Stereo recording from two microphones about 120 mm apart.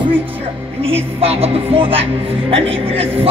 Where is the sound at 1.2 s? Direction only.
50° right (ahead or behind).